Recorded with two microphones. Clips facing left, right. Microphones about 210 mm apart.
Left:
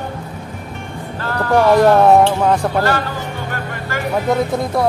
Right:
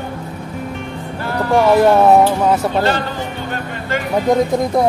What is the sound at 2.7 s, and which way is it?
Speech, 20° right (ahead or behind).